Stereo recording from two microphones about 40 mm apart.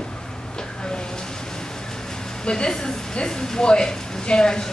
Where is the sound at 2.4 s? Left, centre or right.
Left.